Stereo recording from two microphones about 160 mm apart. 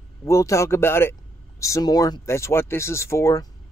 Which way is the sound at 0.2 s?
20° left (ahead or behind).